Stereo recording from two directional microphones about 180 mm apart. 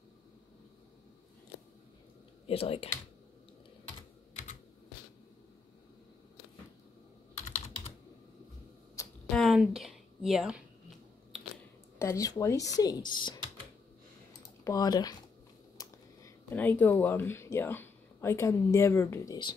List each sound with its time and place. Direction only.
2.4 s speech: 30° left (ahead or behind)
9.3 s a sound: centre (ahead or behind)
12.0 s speech: 15° left (ahead or behind)
14.6 s speech: 20° left (ahead or behind)
15.8 s a sound: 20° left (ahead or behind)
16.4 s speech: 10° left (ahead or behind)